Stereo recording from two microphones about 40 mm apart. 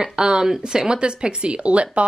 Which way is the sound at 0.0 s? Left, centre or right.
Right.